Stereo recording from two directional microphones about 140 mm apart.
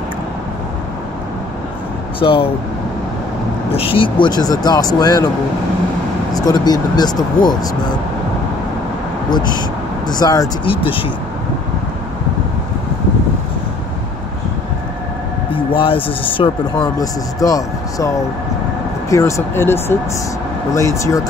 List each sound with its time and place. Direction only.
2.1 s speech: 40° left (ahead or behind)
3.7 s speech: 40° left (ahead or behind)
6.3 s speech: 30° left (ahead or behind)
9.3 s speech: 30° left (ahead or behind)
10.6 s speech: 40° left (ahead or behind)
15.5 s a sound: 40° left (ahead or behind)
16.4 s speech: 35° left (ahead or behind)
16.8 s speech: 25° left (ahead or behind)